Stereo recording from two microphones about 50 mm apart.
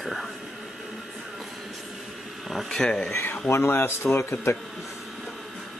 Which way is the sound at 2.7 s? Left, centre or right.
Centre.